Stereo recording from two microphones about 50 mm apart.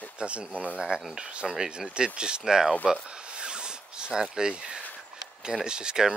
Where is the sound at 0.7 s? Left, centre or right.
Centre.